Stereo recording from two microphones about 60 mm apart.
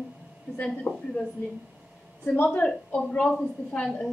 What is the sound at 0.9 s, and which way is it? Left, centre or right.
Speech, left.